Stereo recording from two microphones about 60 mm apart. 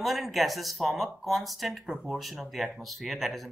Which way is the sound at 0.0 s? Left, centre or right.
Centre.